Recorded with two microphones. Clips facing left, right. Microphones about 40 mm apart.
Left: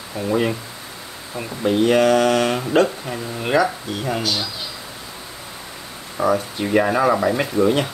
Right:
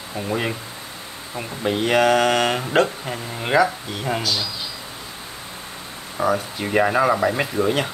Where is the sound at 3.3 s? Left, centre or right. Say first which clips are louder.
Even; centre.